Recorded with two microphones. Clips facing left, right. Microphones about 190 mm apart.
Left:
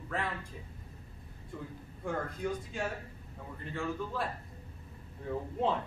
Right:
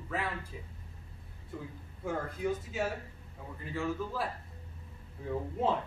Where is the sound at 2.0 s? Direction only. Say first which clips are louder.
Right 1 dB; 5° right (ahead or behind).